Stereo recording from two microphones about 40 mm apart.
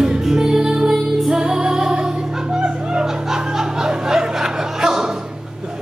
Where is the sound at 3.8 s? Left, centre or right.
Centre.